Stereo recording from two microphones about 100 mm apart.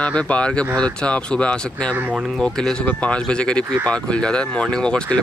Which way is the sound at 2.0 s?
15° right (ahead or behind).